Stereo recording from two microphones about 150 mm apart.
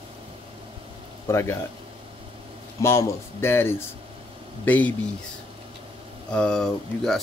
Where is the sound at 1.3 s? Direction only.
20° left (ahead or behind).